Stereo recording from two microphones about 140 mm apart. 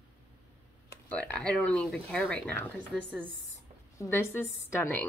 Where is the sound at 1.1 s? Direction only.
10° left (ahead or behind).